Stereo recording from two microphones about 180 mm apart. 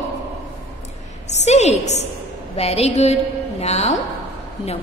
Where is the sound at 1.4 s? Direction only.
40° left (ahead or behind).